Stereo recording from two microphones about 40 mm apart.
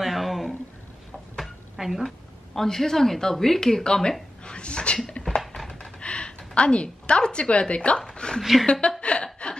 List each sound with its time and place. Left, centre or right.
0.0 s a sound: centre
1.8 s speech: centre
2.5 s speech: centre
4.5 s a sound: left
8.4 s a woman's voice: centre
9.0 s chuckle: left